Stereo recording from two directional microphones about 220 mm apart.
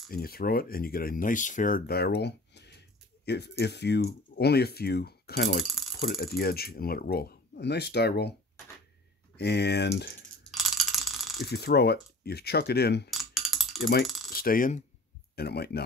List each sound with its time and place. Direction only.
0.1 s speech: 45° left (ahead or behind)
9.4 s speech: 50° left (ahead or behind)
10.5 s a sound: centre (ahead or behind)
11.4 s speech: 45° left (ahead or behind)
13.1 s typing: centre (ahead or behind)
13.7 s a sound: 45° left (ahead or behind)
14.0 s coin: centre (ahead or behind)
14.3 s coin: 40° left (ahead or behind)
15.3 s speech: 45° left (ahead or behind)